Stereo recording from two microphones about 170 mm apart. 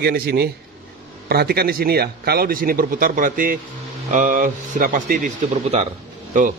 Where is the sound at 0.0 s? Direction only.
65° right (ahead or behind); by 6.5 s 50° right (ahead or behind).